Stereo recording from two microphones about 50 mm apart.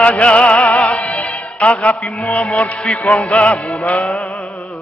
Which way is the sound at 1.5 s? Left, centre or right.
Left.